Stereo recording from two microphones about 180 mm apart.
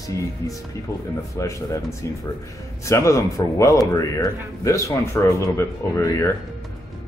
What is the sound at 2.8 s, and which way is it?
A man's voice, 15° left (ahead or behind).